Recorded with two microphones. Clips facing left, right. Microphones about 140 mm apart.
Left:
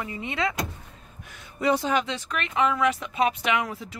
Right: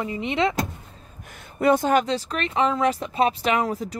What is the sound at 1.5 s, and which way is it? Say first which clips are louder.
Speech: right 5 dB; 50° right (ahead or behind).